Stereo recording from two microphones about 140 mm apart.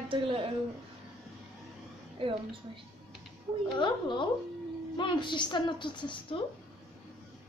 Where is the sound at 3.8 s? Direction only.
35° left (ahead or behind).